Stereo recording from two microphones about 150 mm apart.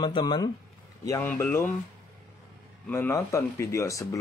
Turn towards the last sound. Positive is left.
turn(degrees=20)  # may be behind; listen again after turning